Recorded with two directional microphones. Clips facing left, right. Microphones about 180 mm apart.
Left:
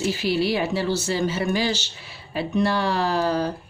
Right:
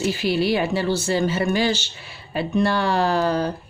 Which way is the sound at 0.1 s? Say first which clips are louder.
Right 2 dB; 55° right (ahead or behind).